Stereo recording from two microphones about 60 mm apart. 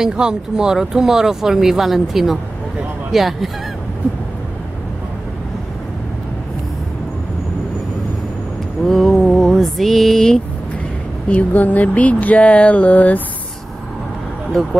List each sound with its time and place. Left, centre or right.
0.0 s speech: centre
8.8 s mantra: centre
11.2 s a sound: left
14.5 s speech: centre